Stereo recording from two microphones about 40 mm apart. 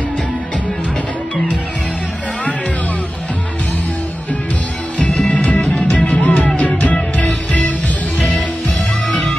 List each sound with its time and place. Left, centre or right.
5.2 s music: left